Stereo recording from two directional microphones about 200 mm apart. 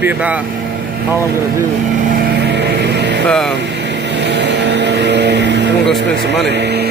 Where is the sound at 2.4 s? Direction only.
60° right (ahead or behind).